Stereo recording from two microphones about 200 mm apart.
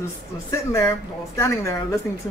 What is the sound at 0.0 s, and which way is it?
Speech, 15° left (ahead or behind).